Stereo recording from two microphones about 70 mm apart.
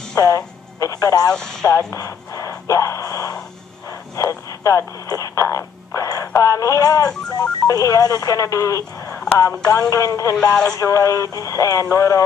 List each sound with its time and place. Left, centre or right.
0.1 s speech: left
1.3 s speech: centre
2.0 s speech: left
10.3 s speech: centre
10.8 s speech: left